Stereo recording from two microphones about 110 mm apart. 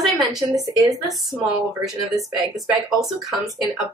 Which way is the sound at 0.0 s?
Centre (ahead or behind).